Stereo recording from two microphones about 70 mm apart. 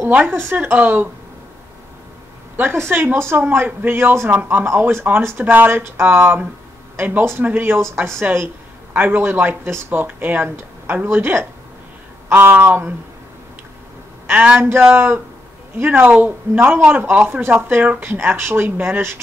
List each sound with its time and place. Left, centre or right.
0.0 s a woman's voice: right
2.5 s speech: right
14.2 s a man's voice: right
14.6 s speech: right